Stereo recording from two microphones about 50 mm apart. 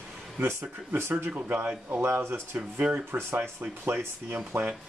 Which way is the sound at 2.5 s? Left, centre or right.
Right.